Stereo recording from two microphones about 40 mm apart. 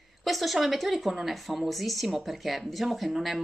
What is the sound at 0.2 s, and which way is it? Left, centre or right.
A man's voice, centre.